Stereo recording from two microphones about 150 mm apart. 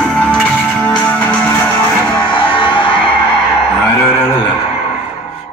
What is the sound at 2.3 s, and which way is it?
Music, 30° left (ahead or behind).